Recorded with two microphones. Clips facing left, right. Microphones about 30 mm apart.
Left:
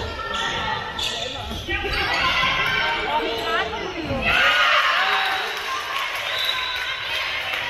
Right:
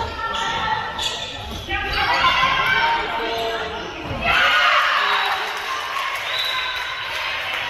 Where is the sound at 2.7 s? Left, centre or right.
Centre.